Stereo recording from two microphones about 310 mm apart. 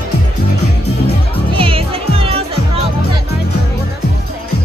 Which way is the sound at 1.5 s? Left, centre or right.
Centre.